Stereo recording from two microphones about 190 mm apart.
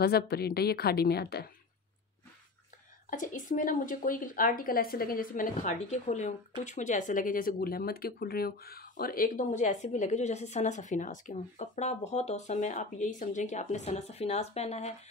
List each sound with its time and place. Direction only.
0.0 s a woman's voice: 55° left (ahead or behind)
3.1 s speech: 45° left (ahead or behind)